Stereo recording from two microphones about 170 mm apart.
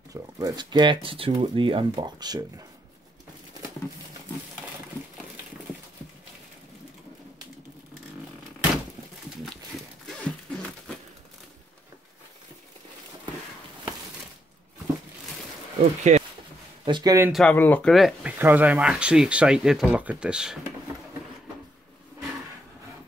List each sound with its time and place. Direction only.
0.1 s speech: 20° right (ahead or behind)
15.8 s speech: 40° right (ahead or behind)
16.8 s speech: 25° right (ahead or behind)
17.3 s speech: 5° left (ahead or behind)